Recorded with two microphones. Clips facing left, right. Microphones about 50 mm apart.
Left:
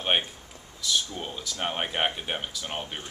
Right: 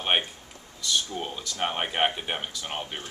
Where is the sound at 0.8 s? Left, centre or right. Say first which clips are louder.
Right 1 dB; centre.